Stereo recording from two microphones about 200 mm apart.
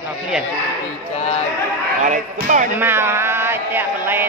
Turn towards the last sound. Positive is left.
turn(degrees=-10)  # may be behind; listen again after turning